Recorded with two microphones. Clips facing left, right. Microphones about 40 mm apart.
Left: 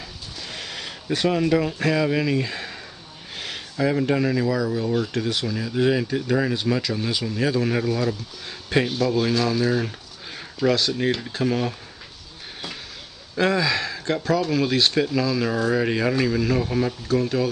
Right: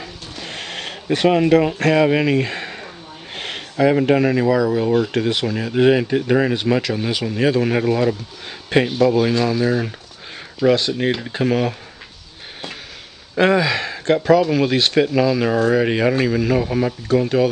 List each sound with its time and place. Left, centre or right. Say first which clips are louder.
0.0 s a sound: right 4 dB; right
1.0 s speech: right 6 dB; right
1.8 s speech: right 6 dB; right
13.4 s speech: right 5 dB; right
13.7 s speech: right 6 dB; centre